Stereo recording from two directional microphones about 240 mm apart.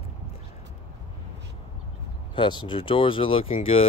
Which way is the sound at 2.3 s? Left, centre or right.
Centre.